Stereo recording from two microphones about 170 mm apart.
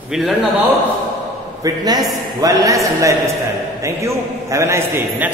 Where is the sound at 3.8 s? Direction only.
15° right (ahead or behind).